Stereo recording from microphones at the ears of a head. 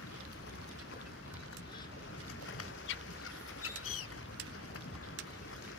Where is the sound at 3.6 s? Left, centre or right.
Left.